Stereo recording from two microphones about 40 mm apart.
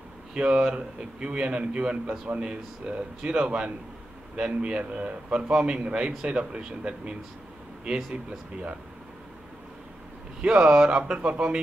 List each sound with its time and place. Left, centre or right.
0.3 s speech: right
2.8 s speech: right
10.4 s speech: right